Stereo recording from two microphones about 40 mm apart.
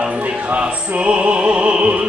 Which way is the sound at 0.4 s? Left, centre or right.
Right.